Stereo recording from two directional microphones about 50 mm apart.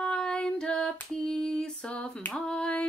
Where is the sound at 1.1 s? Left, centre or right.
Centre.